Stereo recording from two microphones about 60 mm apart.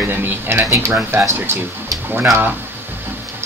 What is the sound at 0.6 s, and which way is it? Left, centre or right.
Speech, right.